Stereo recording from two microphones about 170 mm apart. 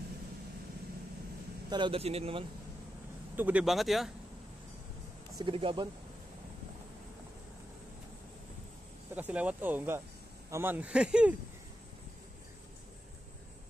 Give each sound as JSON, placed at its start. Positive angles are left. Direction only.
{"t": 1.7, "sound": "speech", "side_deg": -30}
{"t": 3.3, "sound": "speech", "side_deg": -10}
{"t": 5.4, "sound": "speech", "side_deg": -30}
{"t": 9.1, "sound": "speech", "side_deg": -10}